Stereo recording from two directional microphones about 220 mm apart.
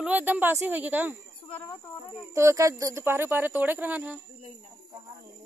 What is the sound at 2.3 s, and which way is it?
Speech, 15° right (ahead or behind).